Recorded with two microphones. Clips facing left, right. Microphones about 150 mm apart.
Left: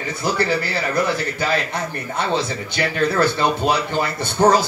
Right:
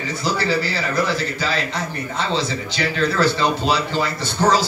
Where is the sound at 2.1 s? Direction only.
55° left (ahead or behind).